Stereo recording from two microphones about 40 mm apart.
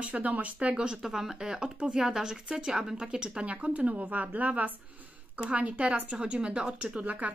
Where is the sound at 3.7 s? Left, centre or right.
Right.